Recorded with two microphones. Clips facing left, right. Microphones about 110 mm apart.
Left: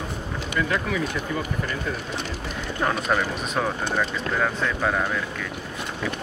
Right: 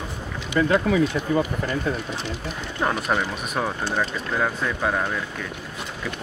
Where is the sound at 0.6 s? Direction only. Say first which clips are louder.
Right 5 dB; 35° right (ahead or behind).